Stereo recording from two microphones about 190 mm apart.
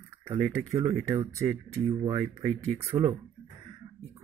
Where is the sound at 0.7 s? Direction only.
30° right (ahead or behind).